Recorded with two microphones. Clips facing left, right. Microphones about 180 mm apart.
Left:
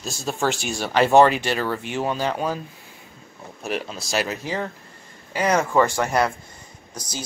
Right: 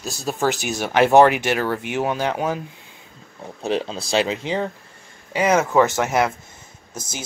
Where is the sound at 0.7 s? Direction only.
15° right (ahead or behind).